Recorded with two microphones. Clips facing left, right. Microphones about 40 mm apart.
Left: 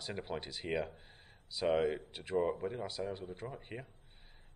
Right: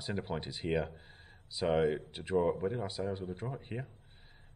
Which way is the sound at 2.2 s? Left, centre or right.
Right.